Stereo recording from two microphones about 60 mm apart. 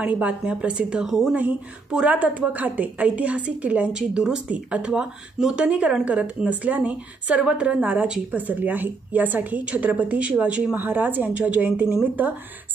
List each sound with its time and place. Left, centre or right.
0.0 s a woman's voice: right
1.3 s a woman's voice: right